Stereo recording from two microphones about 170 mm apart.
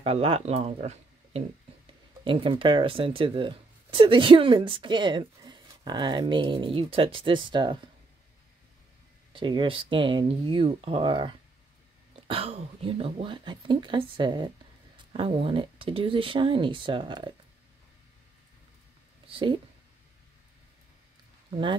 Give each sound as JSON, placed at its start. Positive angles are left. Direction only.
{"t": 0.0, "sound": "speech", "side_deg": -35}
{"t": 9.3, "sound": "speech", "side_deg": -30}
{"t": 19.2, "sound": "speech", "side_deg": -30}